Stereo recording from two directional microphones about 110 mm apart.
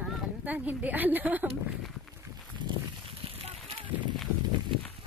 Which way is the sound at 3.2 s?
55° right (ahead or behind).